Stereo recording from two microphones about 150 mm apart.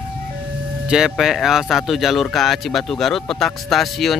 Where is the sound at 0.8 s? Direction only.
5° right (ahead or behind).